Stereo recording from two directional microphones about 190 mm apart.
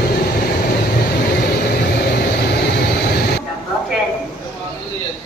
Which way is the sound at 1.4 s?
55° left (ahead or behind).